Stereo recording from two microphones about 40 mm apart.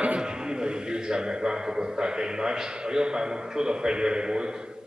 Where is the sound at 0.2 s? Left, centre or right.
Right.